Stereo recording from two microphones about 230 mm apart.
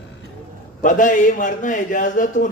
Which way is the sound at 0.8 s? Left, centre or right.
Left.